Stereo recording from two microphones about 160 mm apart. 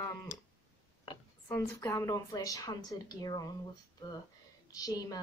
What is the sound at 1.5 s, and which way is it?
A woman's voice, 15° left (ahead or behind).